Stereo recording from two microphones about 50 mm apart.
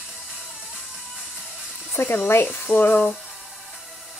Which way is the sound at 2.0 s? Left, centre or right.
Left.